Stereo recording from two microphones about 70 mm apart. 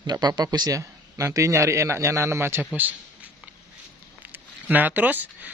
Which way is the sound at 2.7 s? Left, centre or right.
Right.